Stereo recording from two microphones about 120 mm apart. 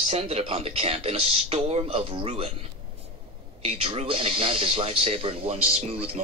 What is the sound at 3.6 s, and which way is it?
Speech, 55° right (ahead or behind).